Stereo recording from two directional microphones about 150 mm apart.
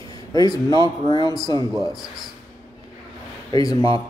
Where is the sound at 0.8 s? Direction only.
25° left (ahead or behind).